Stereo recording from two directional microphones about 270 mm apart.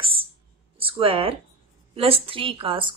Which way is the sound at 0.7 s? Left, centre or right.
Centre.